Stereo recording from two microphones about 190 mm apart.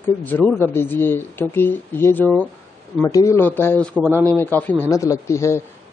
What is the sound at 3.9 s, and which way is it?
Speech, 10° right (ahead or behind).